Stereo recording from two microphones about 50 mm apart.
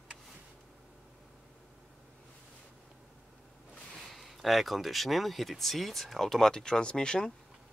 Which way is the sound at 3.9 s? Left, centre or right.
Centre.